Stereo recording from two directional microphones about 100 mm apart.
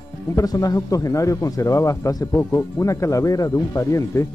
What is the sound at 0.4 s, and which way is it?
Speech, 35° left (ahead or behind).